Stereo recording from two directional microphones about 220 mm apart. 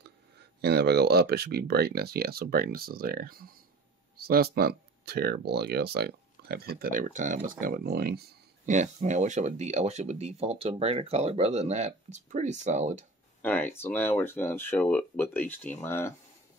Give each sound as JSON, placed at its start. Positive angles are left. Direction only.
{"t": 0.6, "sound": "speech", "side_deg": -45}
{"t": 8.7, "sound": "speech", "side_deg": -35}
{"t": 13.4, "sound": "speech", "side_deg": 10}